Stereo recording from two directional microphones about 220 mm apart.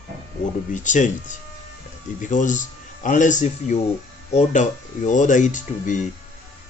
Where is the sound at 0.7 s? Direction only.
35° left (ahead or behind).